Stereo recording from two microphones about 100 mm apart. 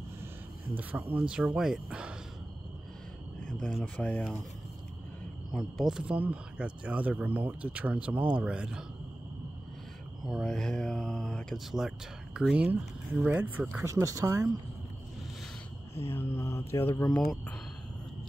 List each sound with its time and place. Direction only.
0.7 s speech: 15° right (ahead or behind)
3.3 s cricket: 10° left (ahead or behind)
3.8 s speech: 15° left (ahead or behind)
5.5 s speech: centre (ahead or behind)
10.2 s speech: centre (ahead or behind)
12.4 s speech: 10° right (ahead or behind)
13.8 s speech: 30° right (ahead or behind)
16.0 s mantra: 25° left (ahead or behind)
17.1 s speech: 10° left (ahead or behind)